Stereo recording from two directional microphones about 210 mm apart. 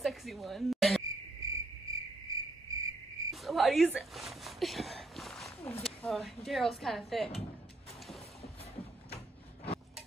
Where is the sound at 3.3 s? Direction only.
Centre (ahead or behind).